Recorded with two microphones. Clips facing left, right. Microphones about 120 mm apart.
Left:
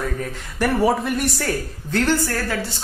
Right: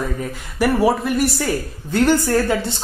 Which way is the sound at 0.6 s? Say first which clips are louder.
Right 2 dB; 5° right (ahead or behind).